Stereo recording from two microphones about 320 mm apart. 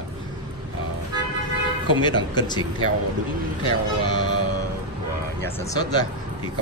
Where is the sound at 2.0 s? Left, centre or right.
Centre.